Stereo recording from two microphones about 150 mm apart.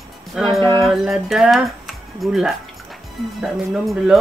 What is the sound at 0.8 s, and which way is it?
Speech, centre (ahead or behind).